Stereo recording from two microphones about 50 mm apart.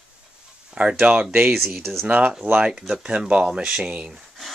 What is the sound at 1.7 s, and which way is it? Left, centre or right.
Speech, centre.